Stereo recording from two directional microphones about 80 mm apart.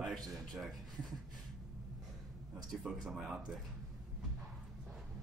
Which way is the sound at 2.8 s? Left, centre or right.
Centre.